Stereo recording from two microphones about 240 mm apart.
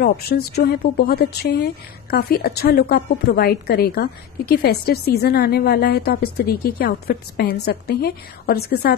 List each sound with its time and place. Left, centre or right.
0.0 s speech: left